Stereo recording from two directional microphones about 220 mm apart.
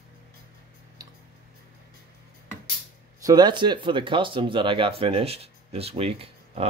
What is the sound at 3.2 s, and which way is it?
Speech, 20° right (ahead or behind).